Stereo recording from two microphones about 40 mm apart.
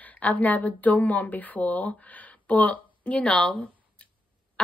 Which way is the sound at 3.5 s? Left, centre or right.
Left.